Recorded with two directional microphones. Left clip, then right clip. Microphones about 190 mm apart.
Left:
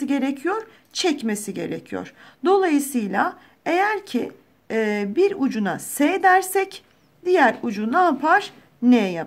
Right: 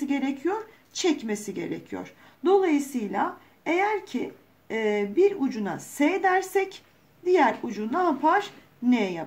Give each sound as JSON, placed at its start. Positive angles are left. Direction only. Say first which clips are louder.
{"t": 0.0, "sound": "a woman's voice", "louder": "left 4 dB", "side_deg": 30}